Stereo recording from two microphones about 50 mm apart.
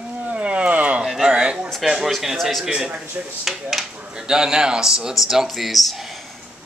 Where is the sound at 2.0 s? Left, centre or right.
Centre.